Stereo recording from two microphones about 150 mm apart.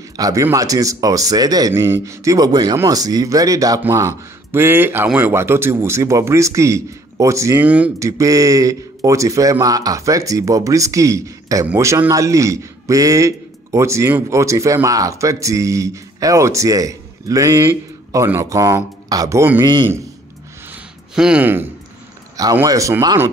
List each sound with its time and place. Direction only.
0.2 s a man's voice: 20° right (ahead or behind)
8.0 s a man's voice: 20° right (ahead or behind)
19.6 s a man's voice: 30° right (ahead or behind)
21.1 s speech: 5° right (ahead or behind)
22.4 s a man's voice: 25° right (ahead or behind)